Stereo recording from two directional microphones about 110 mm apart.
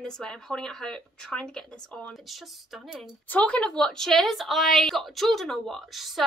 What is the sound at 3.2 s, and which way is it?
A woman's voice, 15° left (ahead or behind).